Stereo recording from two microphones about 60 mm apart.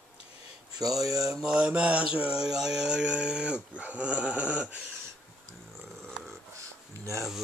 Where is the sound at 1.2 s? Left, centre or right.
Centre; by 4.8 s right.